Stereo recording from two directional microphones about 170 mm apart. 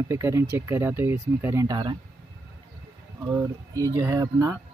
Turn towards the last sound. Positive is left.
turn(degrees=-15)  # may be behind; listen again after turning